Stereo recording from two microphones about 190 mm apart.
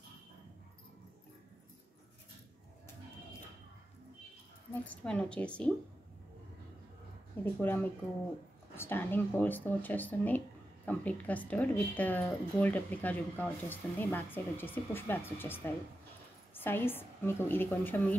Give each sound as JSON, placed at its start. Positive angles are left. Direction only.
{"t": 4.8, "sound": "a woman's voice", "side_deg": 5}
{"t": 7.6, "sound": "speech", "side_deg": 10}